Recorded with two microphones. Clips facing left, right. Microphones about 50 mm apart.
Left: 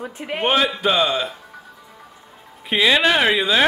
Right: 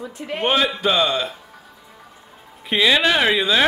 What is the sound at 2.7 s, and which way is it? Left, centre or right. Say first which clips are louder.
Speech: left 1 dB; centre.